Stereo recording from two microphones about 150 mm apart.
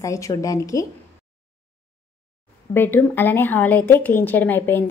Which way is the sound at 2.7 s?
15° left (ahead or behind).